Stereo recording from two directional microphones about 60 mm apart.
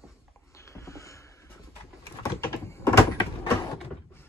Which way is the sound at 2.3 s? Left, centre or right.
Left.